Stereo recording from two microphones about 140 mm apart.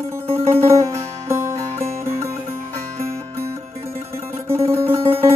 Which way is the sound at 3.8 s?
45° right (ahead or behind).